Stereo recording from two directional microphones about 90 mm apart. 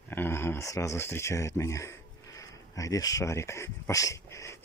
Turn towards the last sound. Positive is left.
turn(degrees=35)  # may be behind; listen again after turning